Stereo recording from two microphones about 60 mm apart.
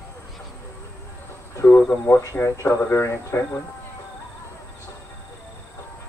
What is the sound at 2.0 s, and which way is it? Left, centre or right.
Speech, left.